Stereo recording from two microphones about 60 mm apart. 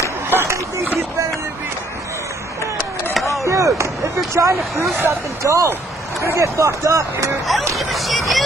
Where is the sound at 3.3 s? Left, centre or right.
Right.